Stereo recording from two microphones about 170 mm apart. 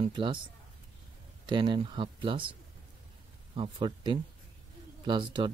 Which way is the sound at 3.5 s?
30° right (ahead or behind).